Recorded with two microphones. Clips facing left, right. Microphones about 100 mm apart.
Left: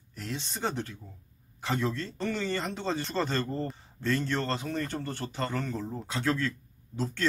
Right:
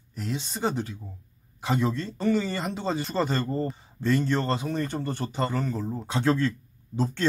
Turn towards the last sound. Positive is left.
turn(degrees=-25)  # may be behind; listen again after turning